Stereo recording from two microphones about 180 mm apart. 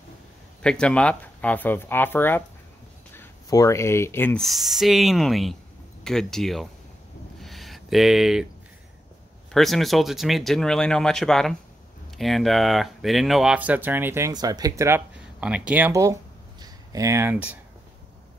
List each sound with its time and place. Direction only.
0.6 s speech: 5° left (ahead or behind)
7.3 s a sound: centre (ahead or behind)
9.5 s speech: centre (ahead or behind)